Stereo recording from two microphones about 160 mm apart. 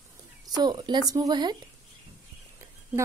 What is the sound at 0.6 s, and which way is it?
Speech, 25° right (ahead or behind).